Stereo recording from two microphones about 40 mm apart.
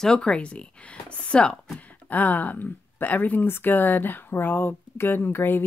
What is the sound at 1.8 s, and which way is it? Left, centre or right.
Speech, left.